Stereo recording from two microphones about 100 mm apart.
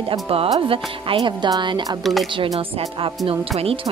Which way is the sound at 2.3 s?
65° right (ahead or behind).